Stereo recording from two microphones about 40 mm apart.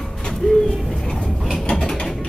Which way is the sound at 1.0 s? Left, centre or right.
Centre.